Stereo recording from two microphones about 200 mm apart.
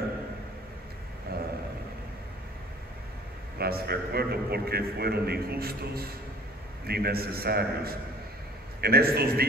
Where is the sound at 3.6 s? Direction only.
50° right (ahead or behind).